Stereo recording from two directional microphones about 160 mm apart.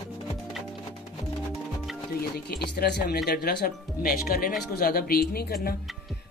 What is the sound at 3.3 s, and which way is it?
Speech, 70° left (ahead or behind).